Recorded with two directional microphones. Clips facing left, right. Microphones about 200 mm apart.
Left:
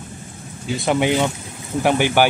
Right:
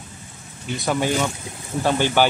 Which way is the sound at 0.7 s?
20° left (ahead or behind).